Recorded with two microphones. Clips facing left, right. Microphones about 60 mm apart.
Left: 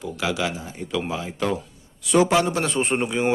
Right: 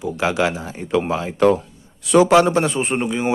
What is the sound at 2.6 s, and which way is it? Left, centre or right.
Speech, centre.